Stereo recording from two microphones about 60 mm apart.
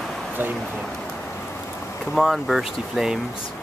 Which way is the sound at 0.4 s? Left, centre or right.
Right.